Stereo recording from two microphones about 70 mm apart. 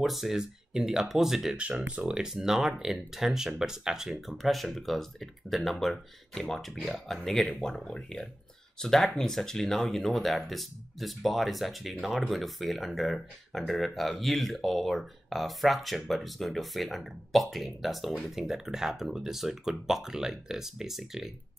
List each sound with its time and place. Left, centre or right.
0.0 s speech: centre